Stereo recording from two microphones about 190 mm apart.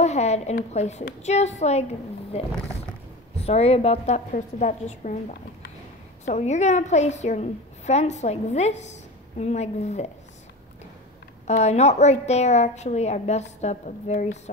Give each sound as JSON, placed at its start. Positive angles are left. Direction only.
{"t": 0.0, "sound": "a sound", "side_deg": 35}
{"t": 0.7, "sound": "a woman's voice", "side_deg": 35}
{"t": 6.2, "sound": "a woman's voice", "side_deg": 35}
{"t": 11.4, "sound": "a woman's voice", "side_deg": 35}